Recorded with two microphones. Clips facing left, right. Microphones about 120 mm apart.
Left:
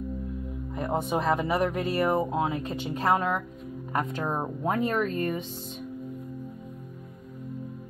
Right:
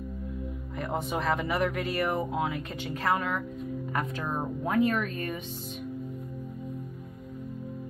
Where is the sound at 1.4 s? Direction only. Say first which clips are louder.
Left 2 dB; 30° left (ahead or behind).